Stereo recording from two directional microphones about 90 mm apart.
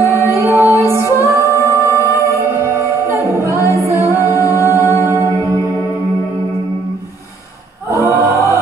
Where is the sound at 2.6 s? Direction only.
30° right (ahead or behind).